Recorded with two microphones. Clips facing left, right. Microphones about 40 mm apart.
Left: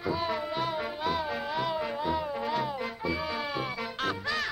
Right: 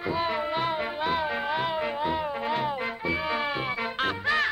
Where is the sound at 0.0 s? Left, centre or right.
Right.